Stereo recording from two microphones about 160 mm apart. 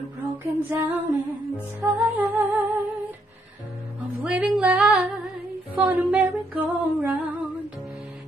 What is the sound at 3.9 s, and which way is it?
Music, 10° right (ahead or behind).